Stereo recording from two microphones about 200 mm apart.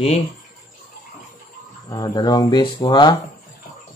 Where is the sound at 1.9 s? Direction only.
20° left (ahead or behind).